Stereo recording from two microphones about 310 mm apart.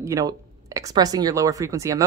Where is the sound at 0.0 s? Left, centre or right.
Centre.